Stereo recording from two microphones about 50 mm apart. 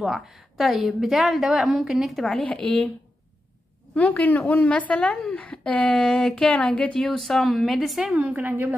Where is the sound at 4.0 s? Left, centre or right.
Left.